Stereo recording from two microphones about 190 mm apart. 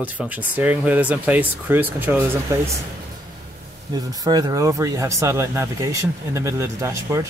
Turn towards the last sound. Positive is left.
turn(degrees=-15)  # may be behind; listen again after turning